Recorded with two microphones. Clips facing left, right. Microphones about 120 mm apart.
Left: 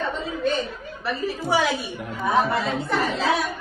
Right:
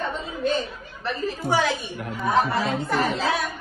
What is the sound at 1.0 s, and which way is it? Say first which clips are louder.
Speech: even; 5° left (ahead or behind).